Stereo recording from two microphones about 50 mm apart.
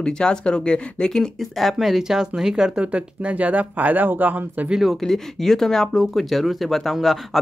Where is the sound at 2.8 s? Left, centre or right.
Right.